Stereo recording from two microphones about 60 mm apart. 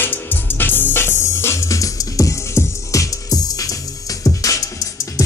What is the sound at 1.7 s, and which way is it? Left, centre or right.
Music, left.